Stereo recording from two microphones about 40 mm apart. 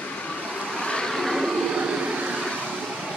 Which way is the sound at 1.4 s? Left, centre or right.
Centre.